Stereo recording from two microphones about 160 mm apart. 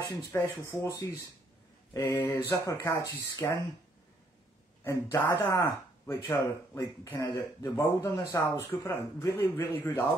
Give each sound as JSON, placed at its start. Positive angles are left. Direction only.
{"t": 0.0, "sound": "speech", "side_deg": 20}
{"t": 4.8, "sound": "speech", "side_deg": 20}